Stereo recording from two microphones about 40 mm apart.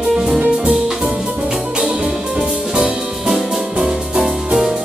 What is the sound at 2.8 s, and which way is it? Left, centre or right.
Music, centre.